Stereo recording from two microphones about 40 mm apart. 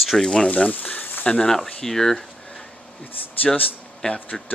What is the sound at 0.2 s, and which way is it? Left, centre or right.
Speech, centre.